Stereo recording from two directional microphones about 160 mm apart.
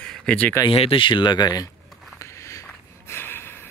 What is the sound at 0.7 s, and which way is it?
Speech, 35° left (ahead or behind).